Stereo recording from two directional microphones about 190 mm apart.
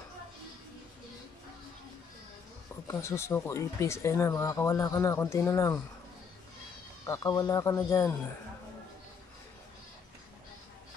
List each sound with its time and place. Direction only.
2.9 s speech: 15° left (ahead or behind)
7.1 s speech: 15° left (ahead or behind)